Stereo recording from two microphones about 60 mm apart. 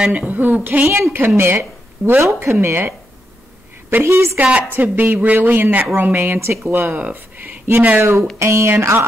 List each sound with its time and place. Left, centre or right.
0.1 s a woman's voice: right
0.8 s speech: right
4.0 s a woman's voice: right
4.7 s speech: right
6.7 s speech: right
8.0 s a woman's voice: right